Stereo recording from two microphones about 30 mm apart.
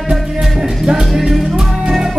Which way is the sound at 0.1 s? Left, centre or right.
Right.